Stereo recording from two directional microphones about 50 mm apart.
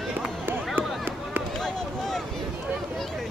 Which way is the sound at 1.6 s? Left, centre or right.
Centre.